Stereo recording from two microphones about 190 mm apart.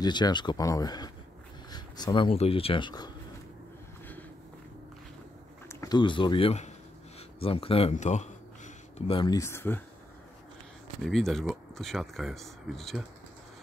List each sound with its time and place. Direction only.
0.0 s speech: 25° left (ahead or behind)
5.7 s speech: 20° left (ahead or behind)
11.0 s speech: centre (ahead or behind)